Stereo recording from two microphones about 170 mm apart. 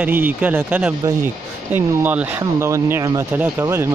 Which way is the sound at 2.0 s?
10° right (ahead or behind).